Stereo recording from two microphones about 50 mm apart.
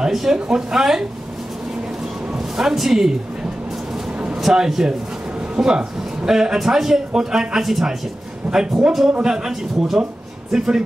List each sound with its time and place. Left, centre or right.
0.0 s speech: centre
2.3 s speech: centre
4.4 s a man's voice: centre